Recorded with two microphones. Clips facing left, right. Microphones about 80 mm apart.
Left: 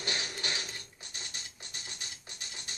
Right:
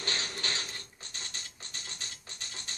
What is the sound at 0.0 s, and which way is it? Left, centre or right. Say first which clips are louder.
Mechanisms: even; centre.